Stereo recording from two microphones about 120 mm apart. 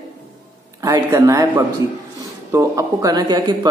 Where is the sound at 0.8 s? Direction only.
30° right (ahead or behind).